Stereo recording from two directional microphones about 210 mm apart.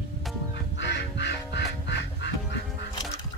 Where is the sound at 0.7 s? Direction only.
55° left (ahead or behind).